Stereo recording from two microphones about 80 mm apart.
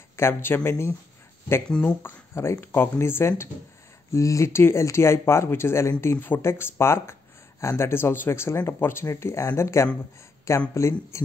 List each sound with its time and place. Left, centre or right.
0.1 s speech: left